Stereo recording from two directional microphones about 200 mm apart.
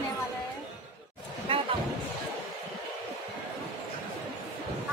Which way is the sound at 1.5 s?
25° right (ahead or behind).